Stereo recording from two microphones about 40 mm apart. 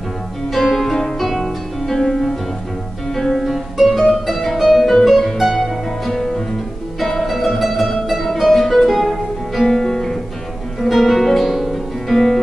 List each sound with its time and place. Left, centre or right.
0.5 s music: centre
10.8 s music: centre